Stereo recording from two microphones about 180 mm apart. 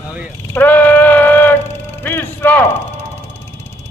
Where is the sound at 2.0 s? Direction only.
10° left (ahead or behind).